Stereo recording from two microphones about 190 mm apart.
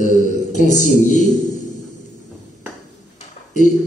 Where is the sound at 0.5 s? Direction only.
40° left (ahead or behind).